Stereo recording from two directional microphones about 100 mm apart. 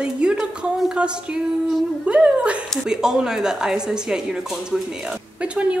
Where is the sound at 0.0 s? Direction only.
10° right (ahead or behind).